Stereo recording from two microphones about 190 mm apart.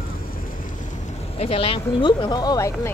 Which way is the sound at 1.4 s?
30° left (ahead or behind).